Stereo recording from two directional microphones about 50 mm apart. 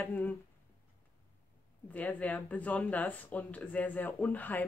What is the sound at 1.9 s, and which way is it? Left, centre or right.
Speech, left.